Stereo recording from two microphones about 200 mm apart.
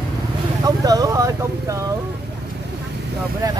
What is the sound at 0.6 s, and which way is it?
Speech, 20° right (ahead or behind).